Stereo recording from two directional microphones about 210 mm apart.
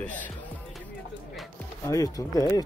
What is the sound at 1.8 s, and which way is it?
Speech, 15° left (ahead or behind).